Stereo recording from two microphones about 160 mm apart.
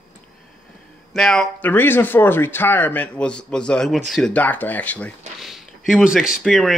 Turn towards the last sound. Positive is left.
turn(degrees=0)  # may be behind; listen again after turning